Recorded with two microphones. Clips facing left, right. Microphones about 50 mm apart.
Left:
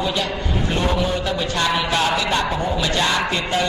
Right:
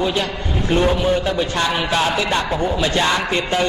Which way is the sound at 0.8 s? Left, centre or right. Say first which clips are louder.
Right 5 dB; right.